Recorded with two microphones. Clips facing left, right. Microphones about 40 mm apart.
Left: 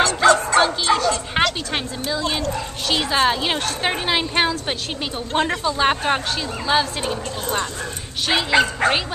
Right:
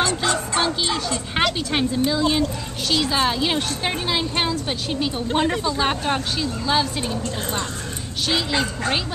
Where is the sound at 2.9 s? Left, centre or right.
Centre.